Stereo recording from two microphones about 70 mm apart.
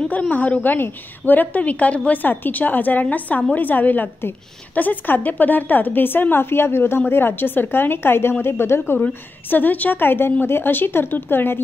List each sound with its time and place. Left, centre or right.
0.1 s a woman's voice: left